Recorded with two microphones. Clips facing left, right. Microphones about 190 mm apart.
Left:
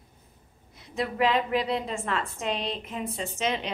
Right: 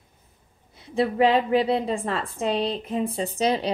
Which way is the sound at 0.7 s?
30° right (ahead or behind).